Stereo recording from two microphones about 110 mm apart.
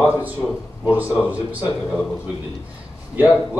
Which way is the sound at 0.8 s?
15° right (ahead or behind).